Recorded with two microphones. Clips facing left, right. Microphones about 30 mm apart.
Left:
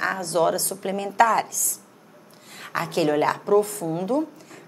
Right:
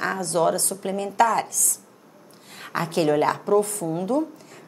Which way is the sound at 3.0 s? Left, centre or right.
Centre.